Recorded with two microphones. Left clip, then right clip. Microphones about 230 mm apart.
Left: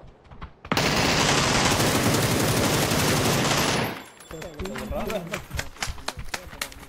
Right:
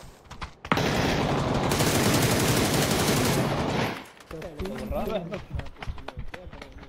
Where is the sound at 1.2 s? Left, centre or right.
Left.